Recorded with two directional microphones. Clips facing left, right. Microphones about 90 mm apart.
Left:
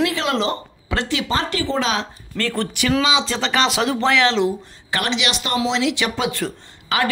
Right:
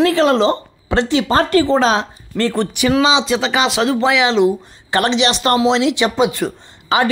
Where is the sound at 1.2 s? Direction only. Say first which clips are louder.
Right 8 dB; 45° right (ahead or behind).